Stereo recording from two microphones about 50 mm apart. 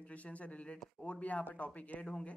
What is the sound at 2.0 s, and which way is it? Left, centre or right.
Speech, centre.